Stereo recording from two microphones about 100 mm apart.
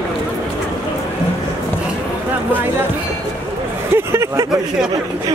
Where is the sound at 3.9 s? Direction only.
25° right (ahead or behind).